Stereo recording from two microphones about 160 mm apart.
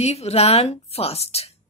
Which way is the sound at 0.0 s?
40° left (ahead or behind).